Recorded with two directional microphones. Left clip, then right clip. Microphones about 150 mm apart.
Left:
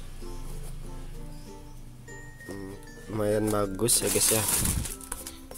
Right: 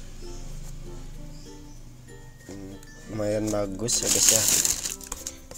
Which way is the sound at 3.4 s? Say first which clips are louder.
Left 1 dB; 30° left (ahead or behind).